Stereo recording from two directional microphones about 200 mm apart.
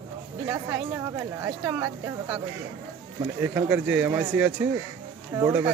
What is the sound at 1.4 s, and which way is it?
Speech, 10° right (ahead or behind).